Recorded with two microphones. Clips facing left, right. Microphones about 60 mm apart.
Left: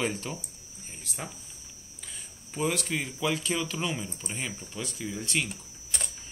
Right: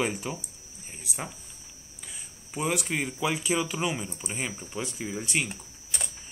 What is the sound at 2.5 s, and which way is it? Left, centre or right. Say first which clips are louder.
Speech: even; centre.